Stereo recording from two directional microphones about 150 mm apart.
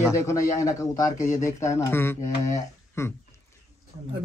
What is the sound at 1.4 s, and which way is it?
A man's voice, 20° left (ahead or behind).